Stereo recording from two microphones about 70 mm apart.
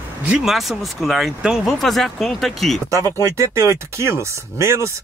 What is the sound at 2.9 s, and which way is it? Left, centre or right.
Speech, right.